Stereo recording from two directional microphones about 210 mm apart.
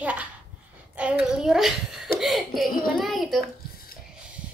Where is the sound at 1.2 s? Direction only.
Centre (ahead or behind).